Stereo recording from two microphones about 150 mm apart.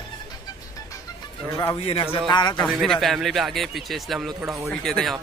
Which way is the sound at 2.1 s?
30° left (ahead or behind).